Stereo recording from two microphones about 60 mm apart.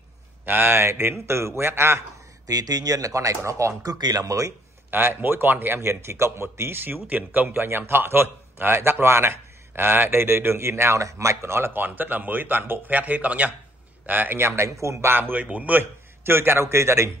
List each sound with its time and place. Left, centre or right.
0.5 s speech: right
2.4 s speech: right
4.9 s speech: right
5.8 s speech: right
11.0 s speech: right
14.4 s speech: right
15.1 s speech: right
15.8 s a man's voice: right